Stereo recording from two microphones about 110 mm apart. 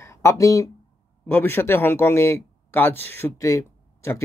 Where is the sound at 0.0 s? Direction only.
25° left (ahead or behind).